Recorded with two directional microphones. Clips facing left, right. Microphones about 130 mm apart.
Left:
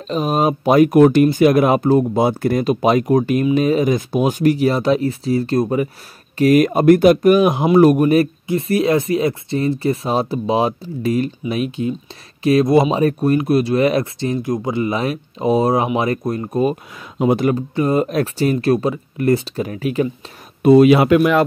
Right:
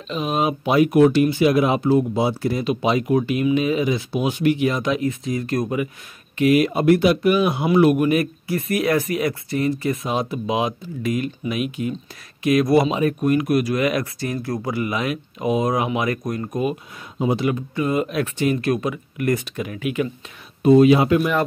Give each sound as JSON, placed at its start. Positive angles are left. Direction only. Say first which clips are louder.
{"t": 0.1, "sound": "speech", "louder": "left 4 dB", "side_deg": 40}
{"t": 17.2, "sound": "speech", "louder": "left 5 dB", "side_deg": 60}
{"t": 17.5, "sound": "speech", "louder": "left 5 dB", "side_deg": 35}
{"t": 20.6, "sound": "speech", "louder": "left 3 dB", "side_deg": 70}